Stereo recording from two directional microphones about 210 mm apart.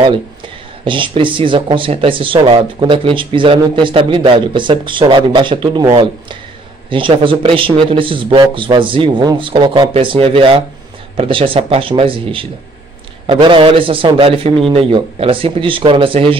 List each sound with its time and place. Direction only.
0.8 s speech: 25° right (ahead or behind)